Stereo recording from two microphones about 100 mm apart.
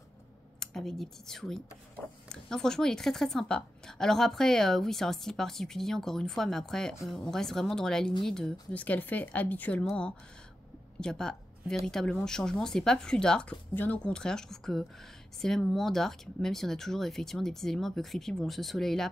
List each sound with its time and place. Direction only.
0.6 s a woman's voice: 5° left (ahead or behind)